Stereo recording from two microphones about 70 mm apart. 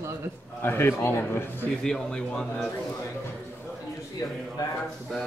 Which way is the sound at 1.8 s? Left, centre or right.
Centre.